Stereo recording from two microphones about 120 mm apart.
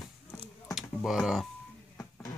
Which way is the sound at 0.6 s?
Centre (ahead or behind).